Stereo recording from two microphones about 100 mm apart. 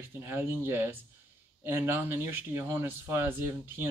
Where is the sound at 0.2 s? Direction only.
25° right (ahead or behind).